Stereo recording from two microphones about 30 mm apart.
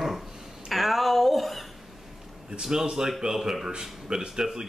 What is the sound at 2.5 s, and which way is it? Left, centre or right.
Speech, right.